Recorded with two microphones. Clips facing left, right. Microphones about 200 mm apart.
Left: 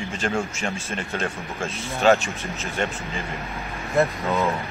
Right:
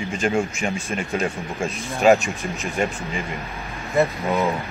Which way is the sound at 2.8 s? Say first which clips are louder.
Right 3 dB; 10° right (ahead or behind).